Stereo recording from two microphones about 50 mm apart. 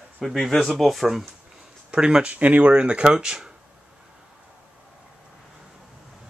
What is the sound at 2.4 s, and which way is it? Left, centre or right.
Speech, right.